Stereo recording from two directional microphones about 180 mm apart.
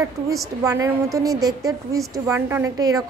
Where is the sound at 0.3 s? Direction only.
15° right (ahead or behind).